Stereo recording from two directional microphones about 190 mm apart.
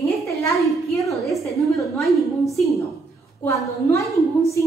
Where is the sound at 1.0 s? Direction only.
Centre (ahead or behind).